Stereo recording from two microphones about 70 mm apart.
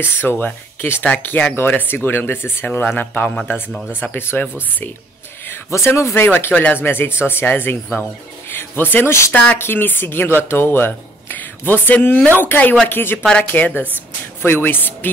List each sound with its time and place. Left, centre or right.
0.0 s speech: left
5.7 s speech: left
13.3 s speech: centre